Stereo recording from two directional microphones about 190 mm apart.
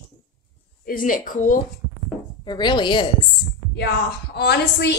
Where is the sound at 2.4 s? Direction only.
25° left (ahead or behind).